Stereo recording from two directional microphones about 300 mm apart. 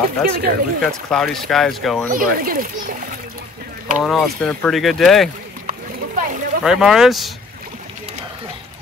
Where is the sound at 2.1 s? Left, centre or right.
Right.